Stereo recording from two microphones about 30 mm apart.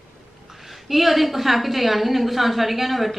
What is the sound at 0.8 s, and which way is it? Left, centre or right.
A woman's voice, centre.